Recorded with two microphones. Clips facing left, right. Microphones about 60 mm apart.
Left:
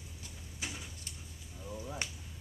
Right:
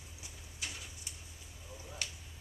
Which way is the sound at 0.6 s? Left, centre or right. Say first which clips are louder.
Left 2 dB; centre.